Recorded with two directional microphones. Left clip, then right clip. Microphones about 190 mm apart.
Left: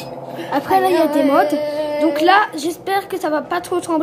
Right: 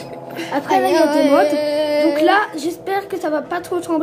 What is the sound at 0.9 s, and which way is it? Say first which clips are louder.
Speech: right 1 dB; 45° right (ahead or behind).